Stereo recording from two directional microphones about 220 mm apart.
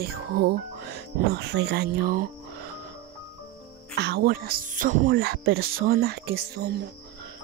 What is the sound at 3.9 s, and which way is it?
Speech, 50° right (ahead or behind).